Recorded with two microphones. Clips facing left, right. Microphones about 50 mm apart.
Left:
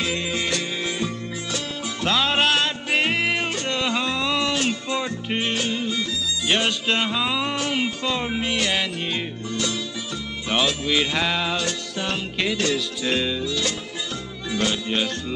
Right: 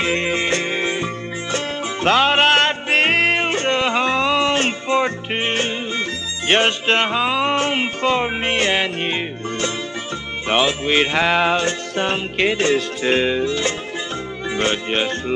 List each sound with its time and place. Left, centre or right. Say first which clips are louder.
0.0 s music: right 6 dB; right
14.5 s speech: right 3 dB; right